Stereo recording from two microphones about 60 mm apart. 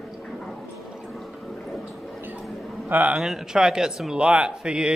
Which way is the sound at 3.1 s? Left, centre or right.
Centre.